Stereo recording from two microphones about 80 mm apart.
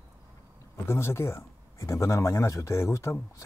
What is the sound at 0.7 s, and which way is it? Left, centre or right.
Speech, left.